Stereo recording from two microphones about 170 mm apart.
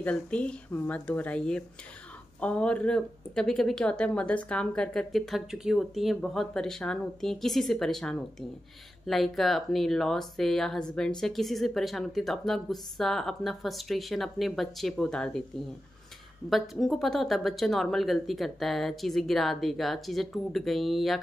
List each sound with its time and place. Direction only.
0.0 s a woman's voice: 5° left (ahead or behind)
16.4 s speech: centre (ahead or behind)